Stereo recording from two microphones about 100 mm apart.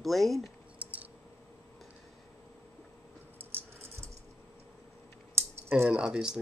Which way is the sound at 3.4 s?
20° right (ahead or behind).